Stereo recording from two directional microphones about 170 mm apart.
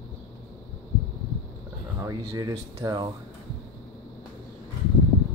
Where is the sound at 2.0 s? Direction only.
20° right (ahead or behind).